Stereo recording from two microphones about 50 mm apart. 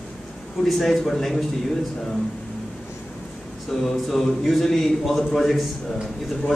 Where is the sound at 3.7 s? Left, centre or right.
Centre.